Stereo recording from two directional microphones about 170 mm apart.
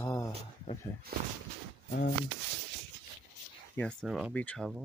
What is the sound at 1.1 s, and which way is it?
Speech, 65° right (ahead or behind).